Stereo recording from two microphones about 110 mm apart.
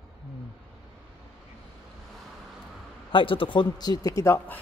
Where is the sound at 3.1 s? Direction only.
50° left (ahead or behind); by 4.6 s 20° left (ahead or behind).